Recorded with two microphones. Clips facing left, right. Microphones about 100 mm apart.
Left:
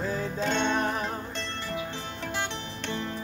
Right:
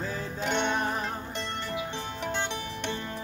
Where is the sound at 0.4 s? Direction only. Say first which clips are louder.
Left 1 dB; 15° right (ahead or behind).